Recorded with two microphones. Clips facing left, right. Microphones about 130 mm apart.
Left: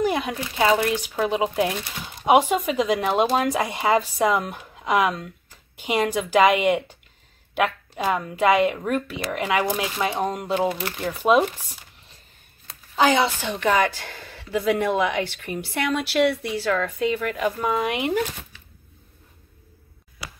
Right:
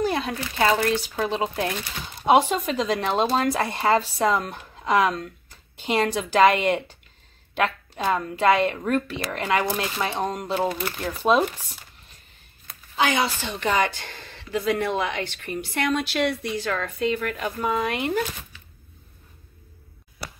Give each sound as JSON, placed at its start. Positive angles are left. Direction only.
{"t": 0.0, "sound": "speech", "side_deg": 15}
{"t": 12.9, "sound": "a woman's voice", "side_deg": 35}
{"t": 13.6, "sound": "speech", "side_deg": 0}
{"t": 17.7, "sound": "speech", "side_deg": 15}